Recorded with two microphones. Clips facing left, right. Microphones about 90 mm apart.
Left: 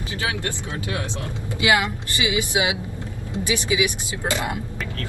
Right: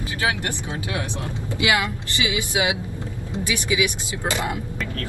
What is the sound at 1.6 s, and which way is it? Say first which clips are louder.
Speech: left 2 dB; 25° left (ahead or behind).